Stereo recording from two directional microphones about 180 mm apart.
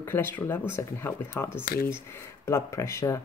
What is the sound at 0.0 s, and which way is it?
Speech, 10° left (ahead or behind).